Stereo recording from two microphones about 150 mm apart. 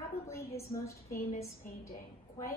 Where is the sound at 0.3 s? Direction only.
20° left (ahead or behind).